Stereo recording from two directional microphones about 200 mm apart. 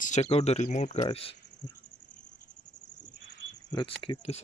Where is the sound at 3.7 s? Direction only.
25° left (ahead or behind).